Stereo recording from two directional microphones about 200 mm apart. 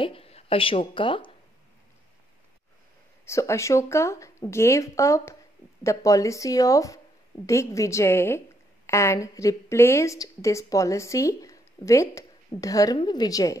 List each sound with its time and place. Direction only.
0.0 s speech: 30° left (ahead or behind)
3.3 s a woman's voice: 15° left (ahead or behind)